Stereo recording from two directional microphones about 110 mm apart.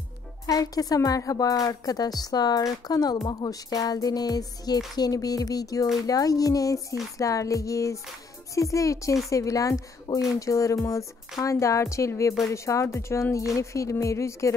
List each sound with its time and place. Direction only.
0.5 s a woman's voice: 35° left (ahead or behind)